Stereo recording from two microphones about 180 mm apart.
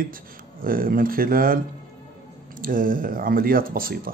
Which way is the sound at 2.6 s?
50° right (ahead or behind).